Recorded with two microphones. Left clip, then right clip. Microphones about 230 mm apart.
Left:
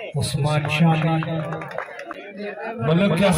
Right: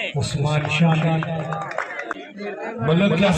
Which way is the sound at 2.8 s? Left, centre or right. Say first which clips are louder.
Even; left.